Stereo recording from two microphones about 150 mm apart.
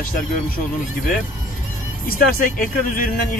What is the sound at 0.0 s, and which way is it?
Speech, 70° left (ahead or behind).